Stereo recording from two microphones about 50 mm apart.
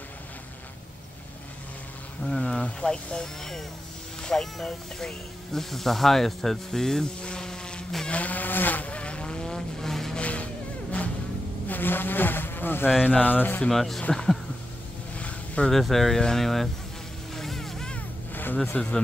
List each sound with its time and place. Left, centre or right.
2.2 s speech: centre
8.1 s vehicle: left; by 10.1 s centre
10.1 s music: left
11.6 s speech: left
13.7 s speech: centre
15.1 s a sound: left
15.7 s speech: centre
17.4 s music: centre
18.3 s a sound: left